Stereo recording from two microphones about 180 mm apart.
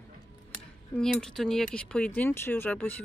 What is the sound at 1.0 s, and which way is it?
Speech, 5° left (ahead or behind).